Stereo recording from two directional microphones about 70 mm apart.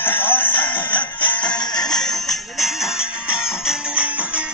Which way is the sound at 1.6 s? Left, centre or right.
Left.